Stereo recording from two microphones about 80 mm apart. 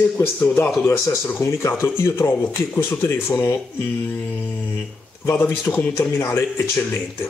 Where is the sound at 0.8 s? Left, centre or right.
Left.